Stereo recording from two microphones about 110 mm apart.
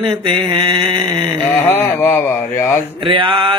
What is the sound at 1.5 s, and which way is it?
A man's voice, 20° left (ahead or behind).